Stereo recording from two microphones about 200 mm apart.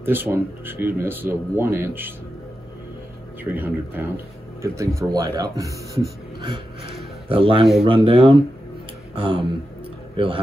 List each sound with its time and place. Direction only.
0.0 s speech: 10° right (ahead or behind)
3.5 s speech: 10° right (ahead or behind)
7.2 s a man's voice: 25° right (ahead or behind)